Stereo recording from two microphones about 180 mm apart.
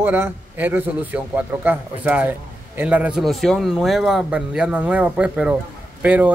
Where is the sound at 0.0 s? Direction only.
10° right (ahead or behind).